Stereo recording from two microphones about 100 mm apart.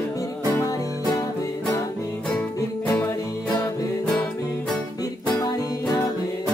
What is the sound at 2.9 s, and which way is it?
Music, 25° left (ahead or behind).